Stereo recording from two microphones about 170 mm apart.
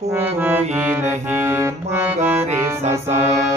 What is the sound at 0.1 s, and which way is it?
Music, 10° right (ahead or behind).